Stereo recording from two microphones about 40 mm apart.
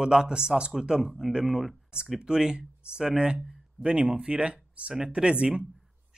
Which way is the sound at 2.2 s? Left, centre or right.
Centre.